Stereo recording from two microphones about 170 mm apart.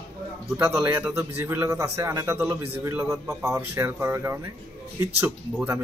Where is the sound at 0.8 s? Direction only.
15° right (ahead or behind).